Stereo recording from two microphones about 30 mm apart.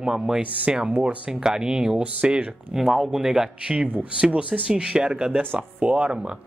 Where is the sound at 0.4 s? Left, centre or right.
Right.